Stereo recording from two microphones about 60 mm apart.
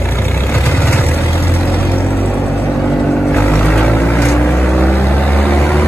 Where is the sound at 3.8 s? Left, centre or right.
Left.